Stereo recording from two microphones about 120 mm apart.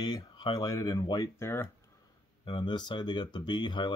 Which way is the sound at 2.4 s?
40° left (ahead or behind).